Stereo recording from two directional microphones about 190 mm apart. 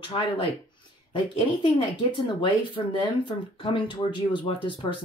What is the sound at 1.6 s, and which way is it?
Speech, 25° left (ahead or behind).